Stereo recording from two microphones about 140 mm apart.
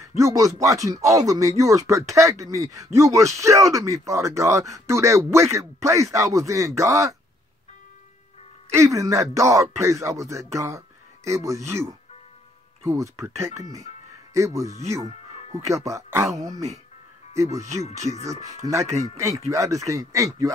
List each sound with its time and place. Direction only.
0.0 s speech: 25° right (ahead or behind)
8.7 s speech: 20° right (ahead or behind)